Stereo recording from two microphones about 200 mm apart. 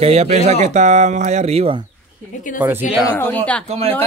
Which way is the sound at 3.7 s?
30° right (ahead or behind).